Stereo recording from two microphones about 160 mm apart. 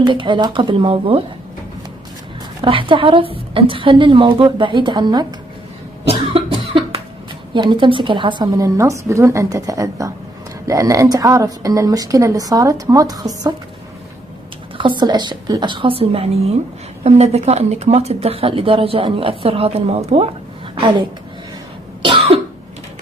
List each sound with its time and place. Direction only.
0.0 s speech: 30° right (ahead or behind)
2.6 s speech: 35° right (ahead or behind)
6.0 s cough: 35° right (ahead or behind)
7.5 s speech: 30° right (ahead or behind)
14.8 s speech: 30° right (ahead or behind)
22.0 s cough: 35° right (ahead or behind)